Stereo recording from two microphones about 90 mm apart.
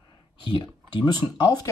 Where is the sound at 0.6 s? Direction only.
55° left (ahead or behind).